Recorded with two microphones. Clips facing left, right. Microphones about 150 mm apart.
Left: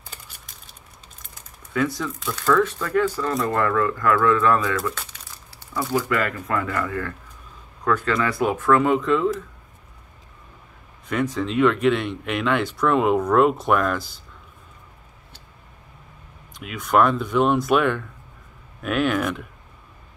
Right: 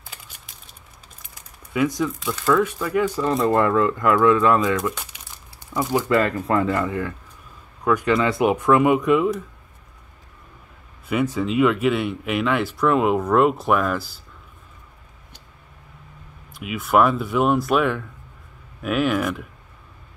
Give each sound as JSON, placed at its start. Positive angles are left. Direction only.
{"t": 0.0, "sound": "a sound", "side_deg": -5}
{"t": 1.7, "sound": "speech", "side_deg": -15}
{"t": 11.1, "sound": "speech", "side_deg": -10}
{"t": 16.5, "sound": "speech", "side_deg": -5}